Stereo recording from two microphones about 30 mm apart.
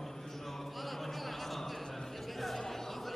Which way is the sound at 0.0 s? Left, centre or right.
Centre.